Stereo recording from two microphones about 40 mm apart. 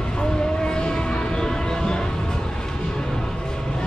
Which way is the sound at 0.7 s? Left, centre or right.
Left.